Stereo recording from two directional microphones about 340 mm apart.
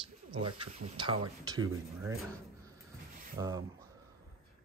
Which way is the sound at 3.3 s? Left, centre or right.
Centre.